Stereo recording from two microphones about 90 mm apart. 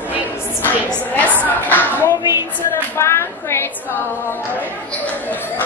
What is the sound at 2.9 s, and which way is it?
Speech, 30° left (ahead or behind).